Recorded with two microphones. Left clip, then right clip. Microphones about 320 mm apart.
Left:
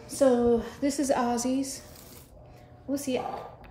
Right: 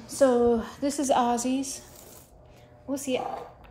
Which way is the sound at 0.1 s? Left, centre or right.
Centre.